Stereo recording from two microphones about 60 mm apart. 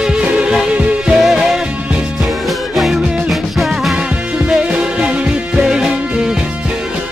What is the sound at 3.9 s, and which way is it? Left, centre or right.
Music, centre.